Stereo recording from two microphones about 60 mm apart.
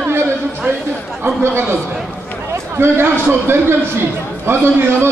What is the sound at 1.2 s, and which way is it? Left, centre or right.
A man's voice, right.